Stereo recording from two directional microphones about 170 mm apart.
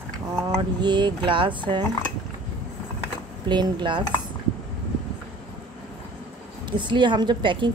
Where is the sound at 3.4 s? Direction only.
25° right (ahead or behind).